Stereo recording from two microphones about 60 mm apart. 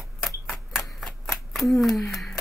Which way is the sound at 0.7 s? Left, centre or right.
Centre.